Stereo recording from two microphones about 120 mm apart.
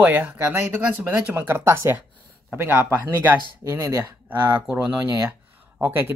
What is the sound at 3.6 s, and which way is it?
Speech, 30° right (ahead or behind).